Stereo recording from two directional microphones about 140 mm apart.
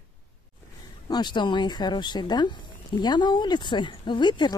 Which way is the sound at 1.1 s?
30° left (ahead or behind).